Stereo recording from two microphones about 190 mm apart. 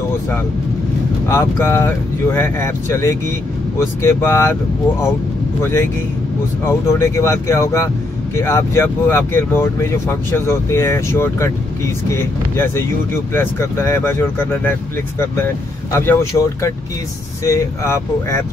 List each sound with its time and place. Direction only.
1.3 s speech: 15° left (ahead or behind)
5.6 s speech: 15° left (ahead or behind)